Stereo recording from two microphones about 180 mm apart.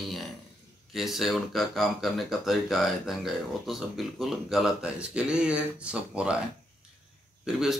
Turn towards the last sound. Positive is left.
turn(degrees=0)  # may be behind; listen again after turning